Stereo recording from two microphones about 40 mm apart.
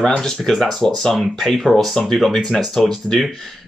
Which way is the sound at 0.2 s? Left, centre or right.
Centre.